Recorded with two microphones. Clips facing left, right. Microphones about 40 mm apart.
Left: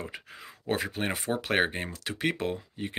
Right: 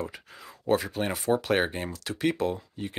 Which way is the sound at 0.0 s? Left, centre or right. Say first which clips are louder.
Right 3 dB; left.